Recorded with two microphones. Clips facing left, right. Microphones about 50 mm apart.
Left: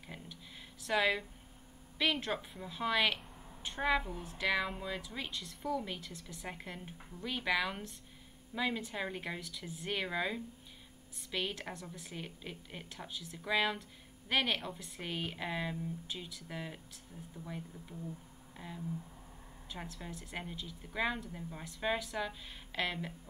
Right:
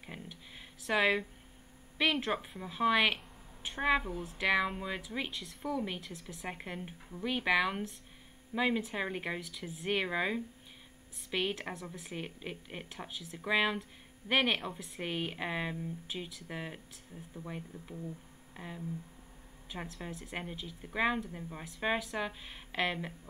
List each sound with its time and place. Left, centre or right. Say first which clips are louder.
0.0 s a sound: right 2 dB; centre
2.0 s a woman's voice: right 3 dB; centre
4.1 s speech: right 3 dB; centre
4.5 s a woman's voice: right 3 dB; centre
5.3 s speech: even; centre
5.6 s a woman's voice: right 1 dB; centre
6.5 s a woman's voice: right 4 dB; right
9.9 s speech: right 3 dB; centre
11.7 s a woman's voice: right 4 dB; centre
14.8 s a woman's voice: right 5 dB; centre
15.0 s a woman's voice: right 3 dB; centre